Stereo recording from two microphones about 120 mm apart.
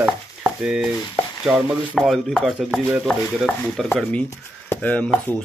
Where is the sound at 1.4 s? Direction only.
10° right (ahead or behind).